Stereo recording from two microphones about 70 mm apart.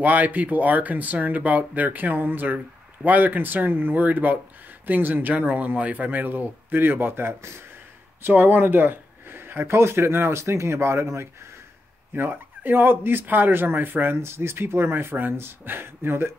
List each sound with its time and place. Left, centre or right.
0.0 s speech: right